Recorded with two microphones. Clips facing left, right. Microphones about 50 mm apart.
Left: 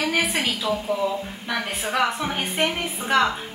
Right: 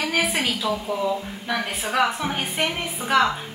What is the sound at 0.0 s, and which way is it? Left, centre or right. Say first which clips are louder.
A woman's voice: even; centre.